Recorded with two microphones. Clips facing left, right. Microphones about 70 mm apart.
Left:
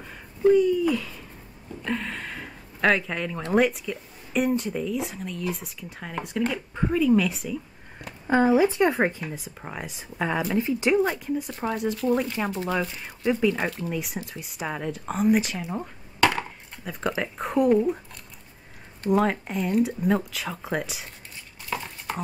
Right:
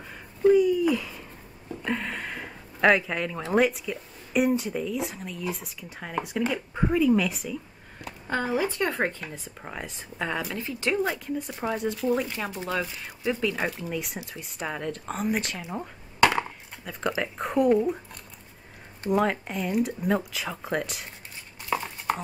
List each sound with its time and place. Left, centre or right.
0.0 s a sound: centre
1.9 s speech: centre
8.3 s speech: centre
11.0 s speech: centre
15.7 s a sound: centre
16.9 s speech: centre
19.0 s speech: centre
21.7 s dishes: centre